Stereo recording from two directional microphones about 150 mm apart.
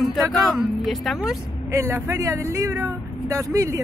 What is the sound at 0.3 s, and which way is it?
Speech, centre (ahead or behind).